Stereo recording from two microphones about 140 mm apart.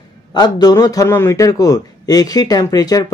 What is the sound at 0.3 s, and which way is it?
Speech, 30° left (ahead or behind).